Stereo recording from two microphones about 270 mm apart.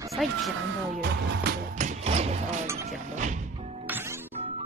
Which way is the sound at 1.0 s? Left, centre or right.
Right.